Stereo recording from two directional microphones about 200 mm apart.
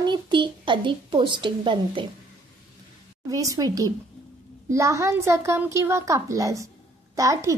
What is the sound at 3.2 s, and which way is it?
A woman's voice, 15° right (ahead or behind).